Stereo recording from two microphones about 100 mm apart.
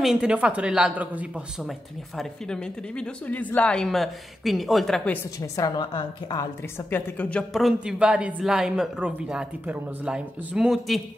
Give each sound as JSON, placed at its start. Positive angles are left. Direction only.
{"t": 0.0, "sound": "speech", "side_deg": -5}
{"t": 1.6, "sound": "speech", "side_deg": 0}
{"t": 5.8, "sound": "a woman's voice", "side_deg": 50}
{"t": 6.9, "sound": "a woman's voice", "side_deg": 20}
{"t": 7.5, "sound": "speech", "side_deg": -5}